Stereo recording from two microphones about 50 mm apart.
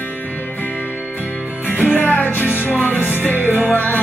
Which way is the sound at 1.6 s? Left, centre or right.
Left.